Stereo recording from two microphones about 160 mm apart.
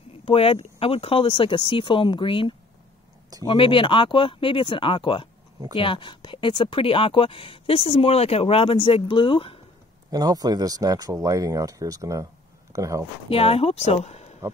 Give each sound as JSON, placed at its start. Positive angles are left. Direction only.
{"t": 0.2, "sound": "speech", "side_deg": 35}
{"t": 10.1, "sound": "speech", "side_deg": -25}
{"t": 13.3, "sound": "speech", "side_deg": 35}